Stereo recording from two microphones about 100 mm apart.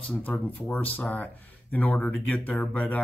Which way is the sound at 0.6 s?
15° left (ahead or behind).